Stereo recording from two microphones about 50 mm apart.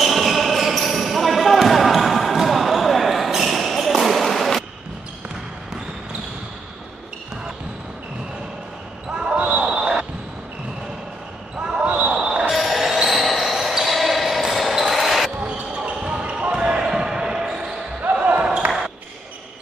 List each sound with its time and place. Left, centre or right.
0.0 s basketball bounce: centre
9.1 s basketball bounce: centre
11.6 s basketball bounce: right
12.4 s basketball bounce: centre
15.4 s basketball bounce: right